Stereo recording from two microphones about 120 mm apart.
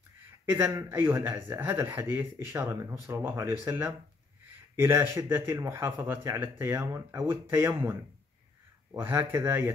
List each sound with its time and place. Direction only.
0.5 s speech: 25° right (ahead or behind)
2.9 s speech: 15° right (ahead or behind)
9.0 s speech: 20° right (ahead or behind)